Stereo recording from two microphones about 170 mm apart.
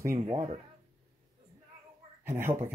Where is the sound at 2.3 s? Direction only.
15° right (ahead or behind).